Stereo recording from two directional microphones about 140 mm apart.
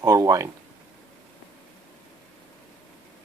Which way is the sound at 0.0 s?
25° right (ahead or behind).